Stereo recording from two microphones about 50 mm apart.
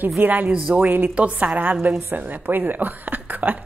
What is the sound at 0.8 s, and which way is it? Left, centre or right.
A woman's voice, right.